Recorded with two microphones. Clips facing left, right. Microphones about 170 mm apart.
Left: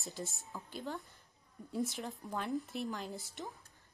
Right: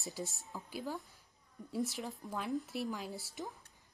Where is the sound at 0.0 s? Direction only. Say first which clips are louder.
Right 1 dB; centre (ahead or behind).